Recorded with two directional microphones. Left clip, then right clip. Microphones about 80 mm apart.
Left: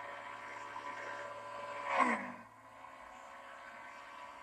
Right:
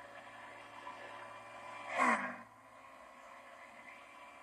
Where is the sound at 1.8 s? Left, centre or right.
Right.